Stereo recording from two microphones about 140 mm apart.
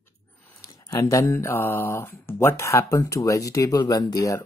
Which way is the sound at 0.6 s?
25° left (ahead or behind).